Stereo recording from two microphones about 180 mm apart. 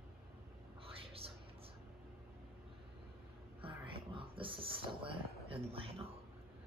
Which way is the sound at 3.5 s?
30° right (ahead or behind).